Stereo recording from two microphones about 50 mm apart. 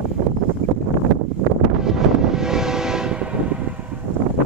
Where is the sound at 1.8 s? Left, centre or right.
Centre.